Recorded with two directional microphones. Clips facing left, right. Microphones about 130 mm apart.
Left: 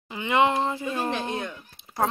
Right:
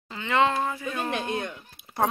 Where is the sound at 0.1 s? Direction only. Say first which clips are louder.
Left 2 dB; 15° left (ahead or behind).